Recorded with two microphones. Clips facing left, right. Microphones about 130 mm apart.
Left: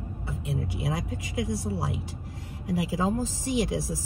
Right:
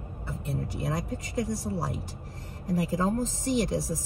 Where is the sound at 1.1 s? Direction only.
45° right (ahead or behind).